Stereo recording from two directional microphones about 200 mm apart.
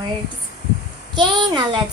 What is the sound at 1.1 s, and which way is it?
Speech, 20° right (ahead or behind).